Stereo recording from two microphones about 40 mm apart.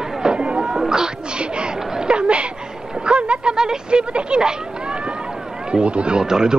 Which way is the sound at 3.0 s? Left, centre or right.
Right.